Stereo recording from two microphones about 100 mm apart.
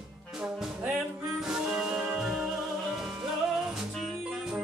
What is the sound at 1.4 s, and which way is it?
Music, 5° right (ahead or behind).